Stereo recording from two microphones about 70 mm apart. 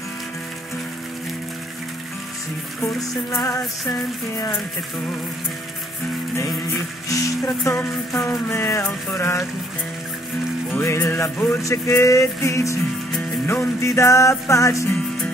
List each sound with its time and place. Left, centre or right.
2.9 s music: left
7.1 s music: left
10.8 s music: left
11.6 s music: left